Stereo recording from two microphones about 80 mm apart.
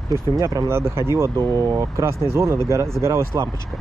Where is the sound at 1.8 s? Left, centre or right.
Right.